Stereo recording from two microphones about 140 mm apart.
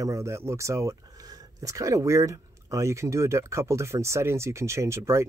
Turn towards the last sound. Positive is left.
turn(degrees=-20)  # may be behind; listen again after turning